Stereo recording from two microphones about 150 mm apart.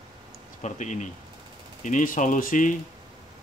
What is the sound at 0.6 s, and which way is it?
Speech, 55° left (ahead or behind).